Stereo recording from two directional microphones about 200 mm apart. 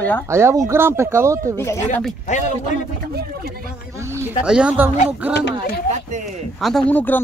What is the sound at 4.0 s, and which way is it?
Speech, 15° right (ahead or behind).